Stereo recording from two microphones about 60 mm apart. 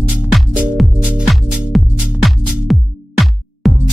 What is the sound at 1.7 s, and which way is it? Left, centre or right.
Music, centre.